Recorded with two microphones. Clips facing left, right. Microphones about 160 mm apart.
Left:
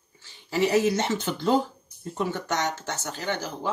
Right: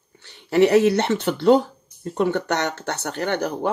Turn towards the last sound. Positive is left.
turn(degrees=-60)  # may be behind; listen again after turning